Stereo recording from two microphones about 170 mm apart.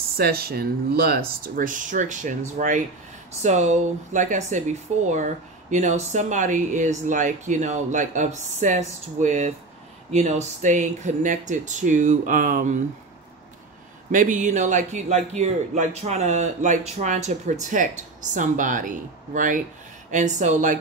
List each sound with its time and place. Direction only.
0.2 s speech: 65° right (ahead or behind)
14.1 s speech: 50° right (ahead or behind)